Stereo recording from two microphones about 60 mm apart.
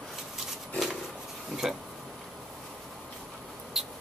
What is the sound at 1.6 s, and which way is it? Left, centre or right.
Speech, centre.